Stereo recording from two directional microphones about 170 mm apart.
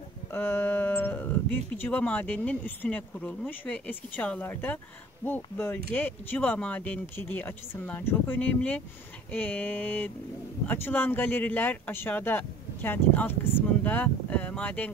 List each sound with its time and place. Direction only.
0.3 s speech: 10° left (ahead or behind)